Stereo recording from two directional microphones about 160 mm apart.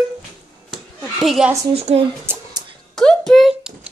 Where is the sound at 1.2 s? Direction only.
Centre (ahead or behind).